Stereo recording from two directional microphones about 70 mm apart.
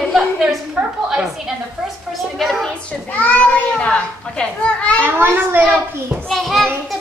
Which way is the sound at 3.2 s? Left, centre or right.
Left.